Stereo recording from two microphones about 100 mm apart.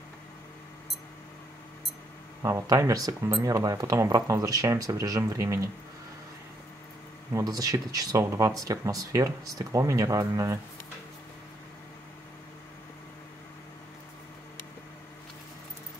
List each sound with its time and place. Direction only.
2.4 s speech: 35° right (ahead or behind)
3.3 s speech: 45° right (ahead or behind)
3.5 s speech: 35° right (ahead or behind)
7.3 s speech: 35° right (ahead or behind)